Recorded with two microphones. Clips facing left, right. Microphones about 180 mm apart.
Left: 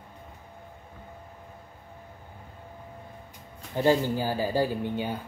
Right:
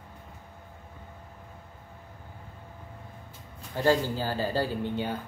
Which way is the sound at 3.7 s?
20° left (ahead or behind).